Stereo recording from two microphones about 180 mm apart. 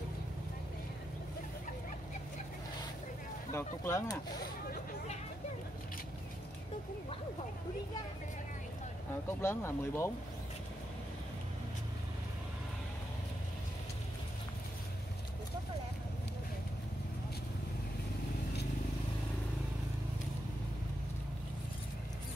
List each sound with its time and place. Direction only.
3.5 s speech: 15° left (ahead or behind)
9.4 s speech: 15° left (ahead or behind)